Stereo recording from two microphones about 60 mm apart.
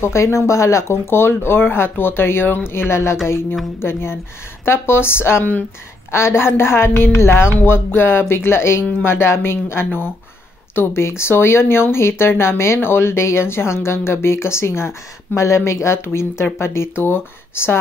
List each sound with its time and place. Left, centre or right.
0.0 s speech: left
1.1 s speech: left